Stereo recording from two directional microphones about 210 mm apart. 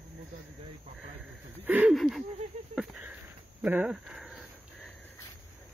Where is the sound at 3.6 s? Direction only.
5° right (ahead or behind).